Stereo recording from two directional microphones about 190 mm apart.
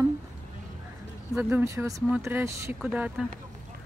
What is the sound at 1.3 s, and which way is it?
Speech, 10° right (ahead or behind).